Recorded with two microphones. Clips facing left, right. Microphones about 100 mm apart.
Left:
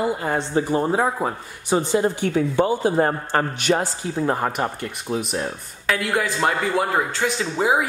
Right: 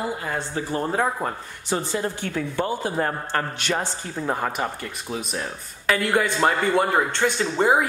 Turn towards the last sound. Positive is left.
turn(degrees=5)  # may be behind; listen again after turning